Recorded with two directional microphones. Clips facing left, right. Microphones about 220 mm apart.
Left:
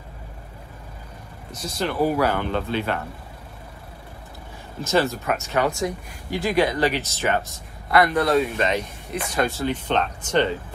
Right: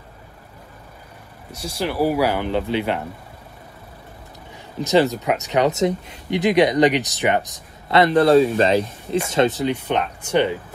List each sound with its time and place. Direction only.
1.5 s speech: 10° right (ahead or behind)
4.7 s speech: 15° right (ahead or behind)